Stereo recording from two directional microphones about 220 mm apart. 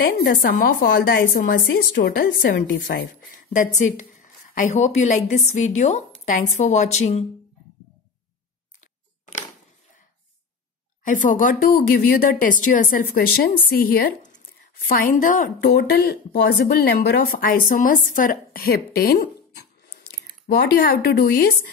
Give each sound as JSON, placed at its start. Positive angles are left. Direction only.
{"t": 0.0, "sound": "a woman's voice", "side_deg": 45}
{"t": 11.1, "sound": "a woman's voice", "side_deg": 35}